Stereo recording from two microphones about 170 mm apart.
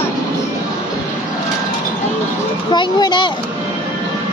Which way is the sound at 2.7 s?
25° left (ahead or behind).